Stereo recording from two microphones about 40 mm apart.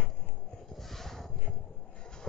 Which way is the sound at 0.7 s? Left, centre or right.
Centre.